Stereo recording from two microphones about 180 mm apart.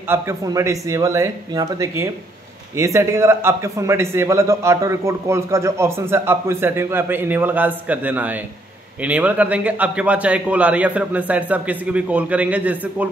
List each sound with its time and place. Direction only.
0.1 s a man's voice: 15° right (ahead or behind)